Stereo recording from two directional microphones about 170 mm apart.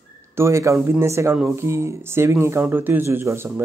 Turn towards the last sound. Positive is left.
turn(degrees=-15)  # may be behind; listen again after turning